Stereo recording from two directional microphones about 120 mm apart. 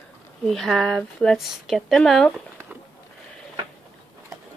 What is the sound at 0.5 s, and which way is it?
Speech, 5° left (ahead or behind).